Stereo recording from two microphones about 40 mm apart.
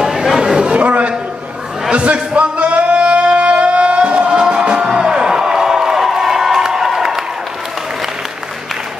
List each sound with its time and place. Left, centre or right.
0.0 s chatter: centre
0.7 s a man's voice: right
1.9 s a sound: right
4.9 s crowd: right